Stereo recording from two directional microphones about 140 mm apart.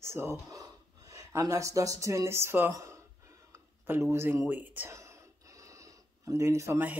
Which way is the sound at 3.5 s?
15° right (ahead or behind).